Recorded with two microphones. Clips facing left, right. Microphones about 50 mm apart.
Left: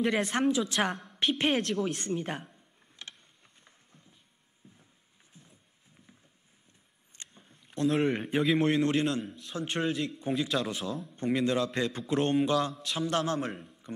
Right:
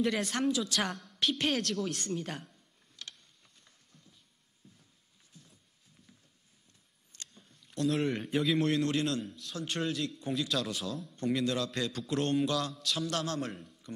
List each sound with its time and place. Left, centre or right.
0.0 s a woman's voice: left
2.5 s computer keyboard: left
3.6 s a sound: left
5.3 s horse: left
7.1 s a sound: left
8.5 s a woman's voice: left
9.2 s a man's voice: centre